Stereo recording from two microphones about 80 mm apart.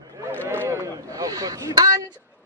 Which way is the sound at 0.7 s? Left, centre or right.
Right.